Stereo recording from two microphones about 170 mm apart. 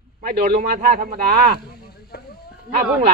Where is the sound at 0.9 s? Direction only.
50° right (ahead or behind).